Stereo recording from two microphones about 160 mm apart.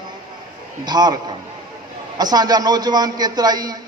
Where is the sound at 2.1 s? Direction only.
25° right (ahead or behind).